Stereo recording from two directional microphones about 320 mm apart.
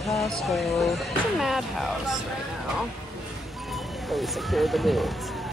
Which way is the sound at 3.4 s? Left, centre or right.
Centre.